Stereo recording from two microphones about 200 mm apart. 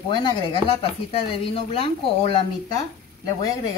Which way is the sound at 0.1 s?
20° left (ahead or behind).